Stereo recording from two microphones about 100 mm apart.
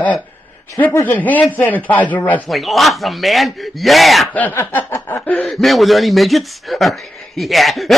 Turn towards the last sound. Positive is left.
turn(degrees=0)  # may be behind; listen again after turning